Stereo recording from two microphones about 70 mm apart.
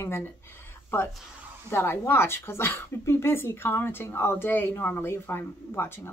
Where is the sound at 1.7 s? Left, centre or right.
Left.